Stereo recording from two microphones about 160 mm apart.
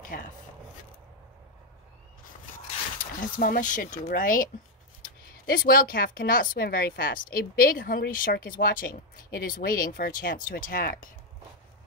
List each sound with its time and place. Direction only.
0.0 s speech: 55° left (ahead or behind)
3.2 s speech: 60° left (ahead or behind)
5.5 s speech: 65° left (ahead or behind)